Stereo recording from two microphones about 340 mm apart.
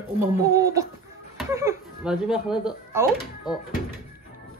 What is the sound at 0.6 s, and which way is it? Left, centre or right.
Speech, centre.